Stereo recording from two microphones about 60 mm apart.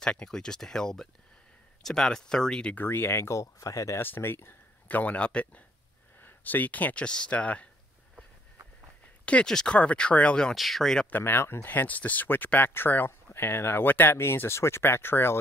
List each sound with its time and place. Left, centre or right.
0.0 s speech: centre
2.7 s speech: left
3.3 s speech: left
4.0 s speech: left
4.8 s speech: left
9.2 s speech: centre
10.5 s speech: centre
11.1 s speech: left